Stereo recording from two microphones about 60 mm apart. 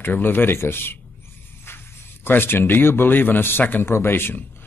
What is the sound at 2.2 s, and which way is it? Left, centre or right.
A man's voice, left.